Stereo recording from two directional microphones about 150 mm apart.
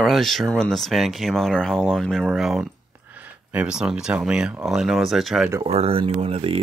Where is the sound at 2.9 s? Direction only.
10° right (ahead or behind).